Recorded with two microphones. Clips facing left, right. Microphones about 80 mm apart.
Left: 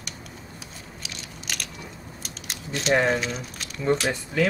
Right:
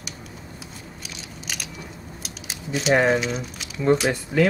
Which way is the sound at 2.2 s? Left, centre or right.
Centre.